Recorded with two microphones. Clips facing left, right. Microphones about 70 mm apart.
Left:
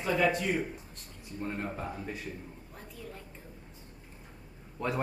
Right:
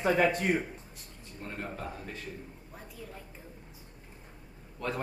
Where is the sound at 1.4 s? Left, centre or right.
Centre.